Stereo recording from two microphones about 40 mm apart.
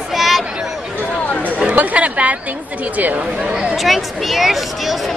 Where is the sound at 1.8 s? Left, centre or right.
Right.